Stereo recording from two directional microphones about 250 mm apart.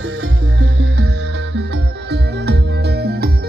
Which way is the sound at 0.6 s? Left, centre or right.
Right.